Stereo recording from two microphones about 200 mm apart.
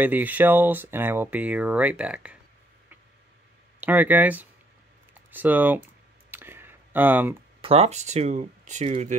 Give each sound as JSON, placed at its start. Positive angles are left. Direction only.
{"t": 0.0, "sound": "speech", "side_deg": -10}
{"t": 3.8, "sound": "speech", "side_deg": -10}
{"t": 6.3, "sound": "a sound", "side_deg": -10}
{"t": 7.6, "sound": "speech", "side_deg": -30}